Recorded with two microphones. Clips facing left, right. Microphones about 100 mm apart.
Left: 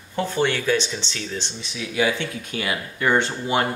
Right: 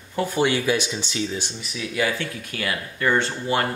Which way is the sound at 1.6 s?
20° left (ahead or behind).